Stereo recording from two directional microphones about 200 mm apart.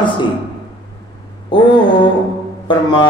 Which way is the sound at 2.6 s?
25° left (ahead or behind).